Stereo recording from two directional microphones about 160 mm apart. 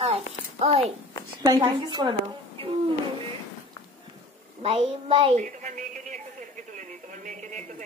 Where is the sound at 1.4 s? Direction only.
30° right (ahead or behind).